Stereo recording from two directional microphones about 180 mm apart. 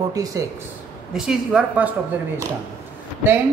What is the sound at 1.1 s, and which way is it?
Speech, 5° right (ahead or behind).